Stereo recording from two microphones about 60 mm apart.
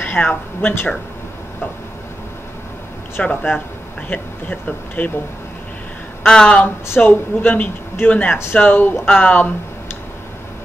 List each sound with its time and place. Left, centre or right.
0.0 s speech: left
3.2 s speech: centre
6.2 s speech: centre
7.0 s speech: left